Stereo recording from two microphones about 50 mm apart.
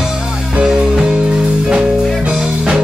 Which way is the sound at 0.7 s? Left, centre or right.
Centre.